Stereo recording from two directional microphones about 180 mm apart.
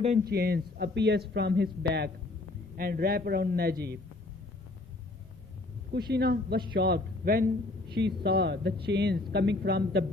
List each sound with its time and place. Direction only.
0.2 s speech: 60° right (ahead or behind)
5.9 s speech: 60° right (ahead or behind)